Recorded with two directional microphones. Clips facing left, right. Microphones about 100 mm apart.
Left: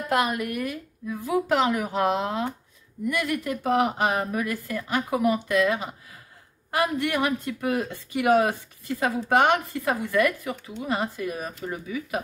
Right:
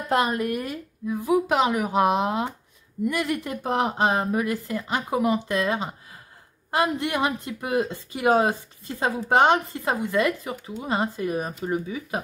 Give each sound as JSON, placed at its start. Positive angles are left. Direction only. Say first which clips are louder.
{"t": 0.1, "sound": "speech", "louder": "right 2 dB", "side_deg": -30}